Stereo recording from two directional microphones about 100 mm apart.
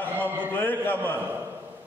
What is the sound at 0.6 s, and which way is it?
Speech, 20° left (ahead or behind).